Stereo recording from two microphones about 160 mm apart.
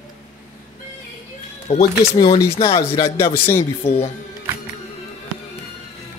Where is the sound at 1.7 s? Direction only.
45° left (ahead or behind).